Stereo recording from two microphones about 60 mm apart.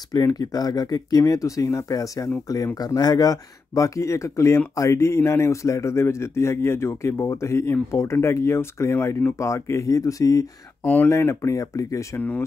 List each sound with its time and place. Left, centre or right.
0.1 s a man's voice: left
10.8 s speech: left
11.1 s speech: left
12.2 s speech: left